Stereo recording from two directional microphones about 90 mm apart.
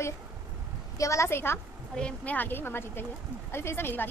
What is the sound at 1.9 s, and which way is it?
Speech, 15° left (ahead or behind).